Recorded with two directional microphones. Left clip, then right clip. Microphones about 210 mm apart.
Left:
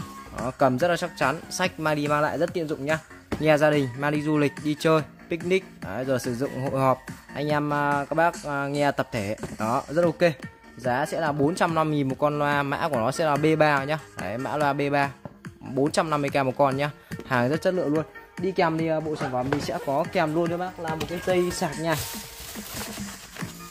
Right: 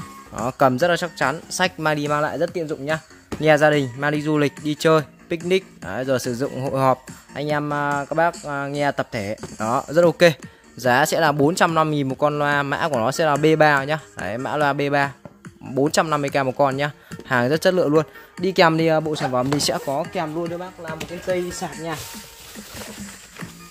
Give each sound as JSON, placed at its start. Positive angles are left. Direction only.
{"t": 0.4, "sound": "speech", "side_deg": -30}
{"t": 20.4, "sound": "speech", "side_deg": 40}